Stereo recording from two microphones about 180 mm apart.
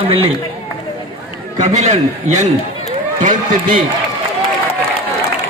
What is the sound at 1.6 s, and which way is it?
A man's voice, 40° right (ahead or behind).